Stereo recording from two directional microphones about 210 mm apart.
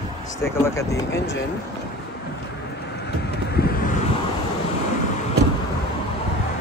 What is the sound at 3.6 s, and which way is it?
Vehicle, 50° left (ahead or behind).